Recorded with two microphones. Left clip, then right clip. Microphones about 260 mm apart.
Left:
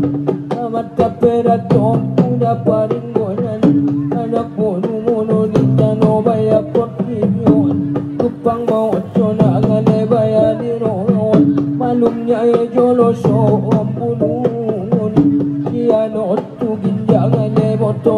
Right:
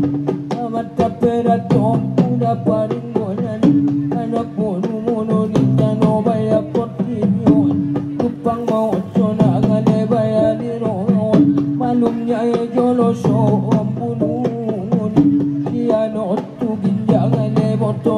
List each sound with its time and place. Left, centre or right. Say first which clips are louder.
0.9 s music: left 4 dB; right